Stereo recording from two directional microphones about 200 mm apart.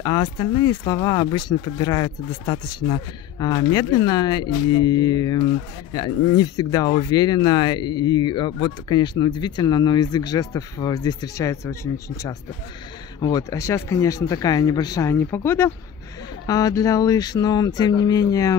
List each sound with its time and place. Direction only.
0.0 s speech: 20° left (ahead or behind)